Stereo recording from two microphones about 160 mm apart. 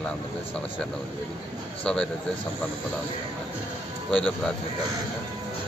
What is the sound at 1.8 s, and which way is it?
Speech, 5° left (ahead or behind).